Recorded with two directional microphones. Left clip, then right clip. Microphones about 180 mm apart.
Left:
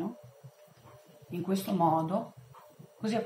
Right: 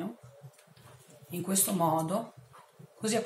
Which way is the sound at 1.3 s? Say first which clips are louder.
Even; 30° right (ahead or behind).